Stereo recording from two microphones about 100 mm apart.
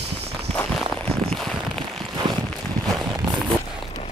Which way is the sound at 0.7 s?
5° left (ahead or behind).